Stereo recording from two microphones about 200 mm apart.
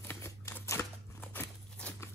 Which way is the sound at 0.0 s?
10° left (ahead or behind).